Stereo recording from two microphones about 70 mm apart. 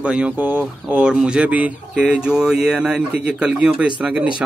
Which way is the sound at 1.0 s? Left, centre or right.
Centre.